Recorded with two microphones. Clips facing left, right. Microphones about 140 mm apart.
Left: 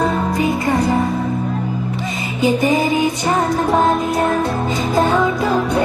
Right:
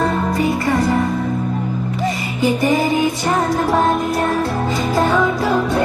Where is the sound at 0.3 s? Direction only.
20° left (ahead or behind).